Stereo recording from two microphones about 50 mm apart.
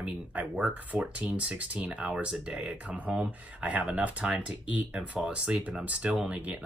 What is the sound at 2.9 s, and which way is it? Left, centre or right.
Speech, right.